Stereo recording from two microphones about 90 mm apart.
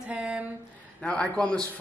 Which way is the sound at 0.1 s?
15° right (ahead or behind).